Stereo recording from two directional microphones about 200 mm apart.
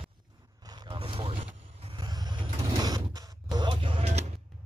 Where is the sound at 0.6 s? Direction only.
25° right (ahead or behind).